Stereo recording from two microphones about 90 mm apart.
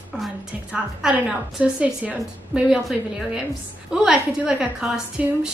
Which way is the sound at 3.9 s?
10° right (ahead or behind).